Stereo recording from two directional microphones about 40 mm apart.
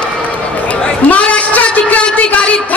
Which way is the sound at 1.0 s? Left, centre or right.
Left.